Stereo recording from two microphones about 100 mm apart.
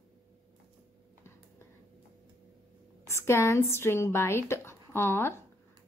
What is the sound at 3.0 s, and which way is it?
A woman's voice, 25° left (ahead or behind).